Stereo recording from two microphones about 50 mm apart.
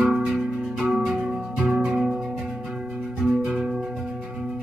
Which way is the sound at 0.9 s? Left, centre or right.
Right.